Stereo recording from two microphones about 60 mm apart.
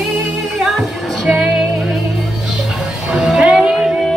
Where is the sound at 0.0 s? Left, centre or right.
Centre.